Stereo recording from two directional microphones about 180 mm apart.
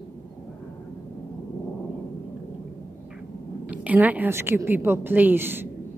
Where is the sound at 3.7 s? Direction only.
10° right (ahead or behind).